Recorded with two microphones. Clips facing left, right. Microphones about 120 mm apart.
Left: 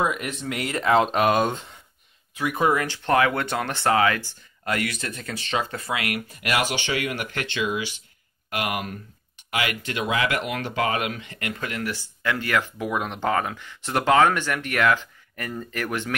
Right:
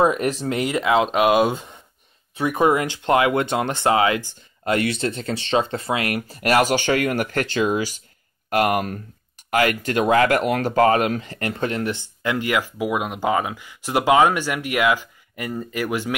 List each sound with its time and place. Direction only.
0.0 s speech: 35° right (ahead or behind)
0.7 s speech: 15° right (ahead or behind)